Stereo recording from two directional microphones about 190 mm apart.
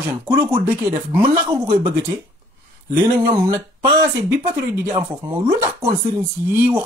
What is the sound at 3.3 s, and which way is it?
Speech, 15° right (ahead or behind).